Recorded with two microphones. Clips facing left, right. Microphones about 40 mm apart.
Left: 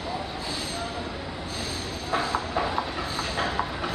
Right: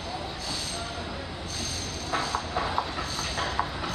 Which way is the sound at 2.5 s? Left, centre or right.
Centre.